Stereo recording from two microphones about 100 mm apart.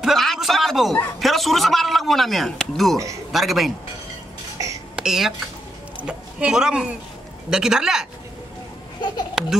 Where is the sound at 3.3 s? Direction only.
Centre (ahead or behind).